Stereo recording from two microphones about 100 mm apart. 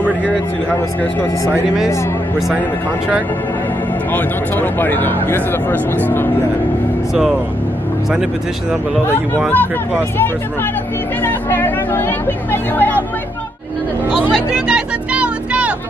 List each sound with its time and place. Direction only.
4.1 s speech: 20° left (ahead or behind)
11.2 s vehicle: 20° left (ahead or behind)
14.1 s vehicle: 10° right (ahead or behind)